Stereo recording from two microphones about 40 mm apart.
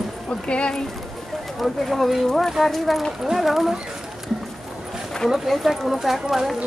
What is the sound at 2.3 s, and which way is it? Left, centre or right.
Speech, centre.